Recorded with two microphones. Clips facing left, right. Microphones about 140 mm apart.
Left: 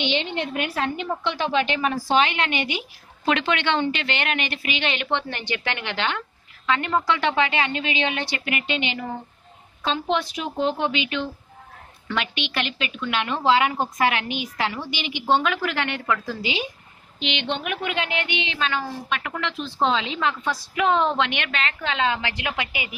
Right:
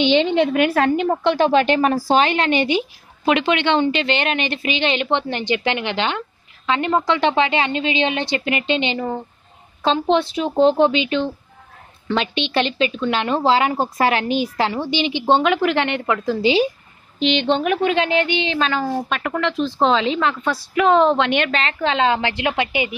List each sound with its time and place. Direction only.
0.1 s a woman's voice: 90° right
0.7 s a woman's voice: 55° right (ahead or behind)
1.3 s speech: 40° right (ahead or behind)
3.3 s a woman's voice: 15° right (ahead or behind)